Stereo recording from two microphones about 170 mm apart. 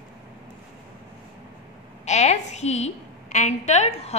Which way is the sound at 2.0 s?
40° left (ahead or behind).